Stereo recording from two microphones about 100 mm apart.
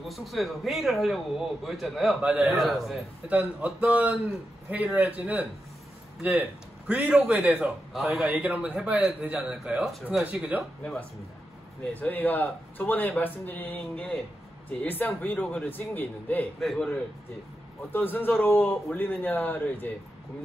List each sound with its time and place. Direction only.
0.1 s a man's voice: centre (ahead or behind)
2.2 s a man's voice: 15° right (ahead or behind)
2.5 s a man's voice: centre (ahead or behind)
3.3 s a man's voice: 15° right (ahead or behind)
6.9 s a man's voice: 15° right (ahead or behind)
8.3 s a man's voice: 15° right (ahead or behind)
11.9 s a man's voice: 15° left (ahead or behind)
16.5 s a man's voice: 5° left (ahead or behind)
17.9 s a man's voice: 20° left (ahead or behind)